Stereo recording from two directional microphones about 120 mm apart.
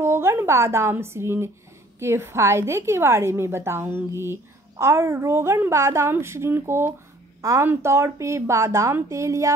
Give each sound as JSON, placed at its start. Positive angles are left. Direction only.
{"t": 0.0, "sound": "a woman's voice", "side_deg": -20}